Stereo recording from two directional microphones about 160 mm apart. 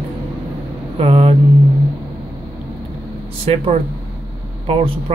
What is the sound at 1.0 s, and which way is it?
Speech, 40° right (ahead or behind).